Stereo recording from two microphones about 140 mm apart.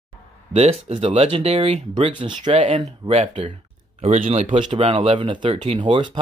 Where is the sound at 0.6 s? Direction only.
50° right (ahead or behind).